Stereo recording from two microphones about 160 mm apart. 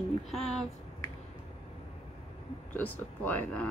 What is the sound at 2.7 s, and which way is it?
Speech, 10° left (ahead or behind).